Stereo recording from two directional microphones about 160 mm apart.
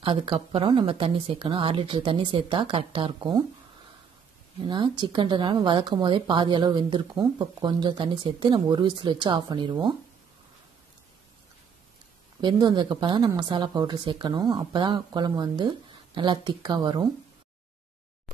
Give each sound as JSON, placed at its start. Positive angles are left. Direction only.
{"t": 0.0, "sound": "speech", "side_deg": -35}
{"t": 4.6, "sound": "speech", "side_deg": -30}
{"t": 12.4, "sound": "speech", "side_deg": -25}